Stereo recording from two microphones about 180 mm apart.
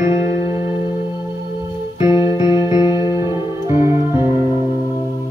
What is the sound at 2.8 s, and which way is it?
Music, 25° left (ahead or behind).